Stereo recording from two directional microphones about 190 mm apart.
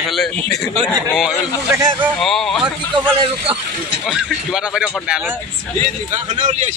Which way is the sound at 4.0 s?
5° right (ahead or behind).